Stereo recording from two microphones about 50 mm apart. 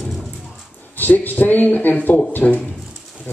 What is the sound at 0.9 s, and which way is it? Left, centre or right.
Speech, left.